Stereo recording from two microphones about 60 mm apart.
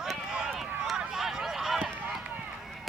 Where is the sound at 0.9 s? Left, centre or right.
Centre.